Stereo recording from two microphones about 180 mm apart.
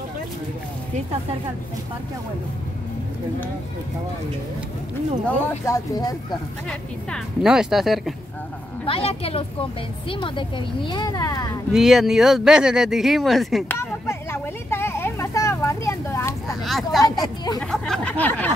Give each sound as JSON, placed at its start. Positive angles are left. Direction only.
{"t": 5.7, "sound": "a woman's voice", "side_deg": 20}
{"t": 6.7, "sound": "speech", "side_deg": 0}
{"t": 8.8, "sound": "a woman's voice", "side_deg": 30}
{"t": 11.7, "sound": "speech", "side_deg": 0}
{"t": 13.7, "sound": "a sound", "side_deg": 15}
{"t": 16.6, "sound": "a sound", "side_deg": 0}
{"t": 17.1, "sound": "a woman's voice", "side_deg": 25}
{"t": 17.6, "sound": "speech", "side_deg": 5}